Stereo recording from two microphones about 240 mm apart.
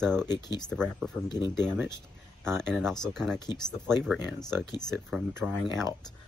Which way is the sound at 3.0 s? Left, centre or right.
Centre.